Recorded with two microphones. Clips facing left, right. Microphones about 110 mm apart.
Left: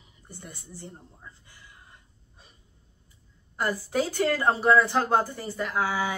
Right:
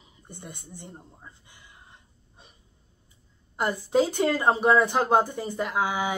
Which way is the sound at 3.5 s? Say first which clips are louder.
Right 4 dB; 20° right (ahead or behind).